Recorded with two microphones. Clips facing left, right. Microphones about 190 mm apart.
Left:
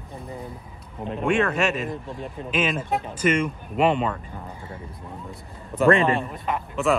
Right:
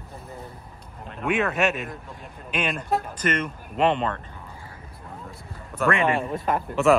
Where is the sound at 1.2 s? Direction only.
Centre (ahead or behind).